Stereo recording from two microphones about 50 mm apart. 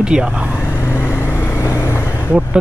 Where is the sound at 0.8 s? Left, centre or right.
Left.